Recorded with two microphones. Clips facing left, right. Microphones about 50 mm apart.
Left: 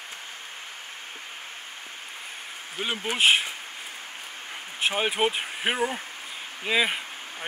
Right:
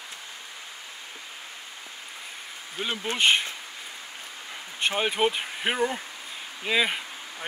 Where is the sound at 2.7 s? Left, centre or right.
Centre.